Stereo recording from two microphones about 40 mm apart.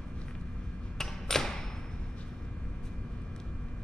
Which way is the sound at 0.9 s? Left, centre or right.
Centre.